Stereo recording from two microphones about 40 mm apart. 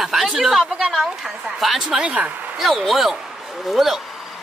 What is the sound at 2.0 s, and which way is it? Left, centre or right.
Speech, right.